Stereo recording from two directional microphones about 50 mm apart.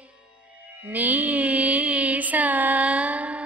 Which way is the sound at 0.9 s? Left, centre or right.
Right.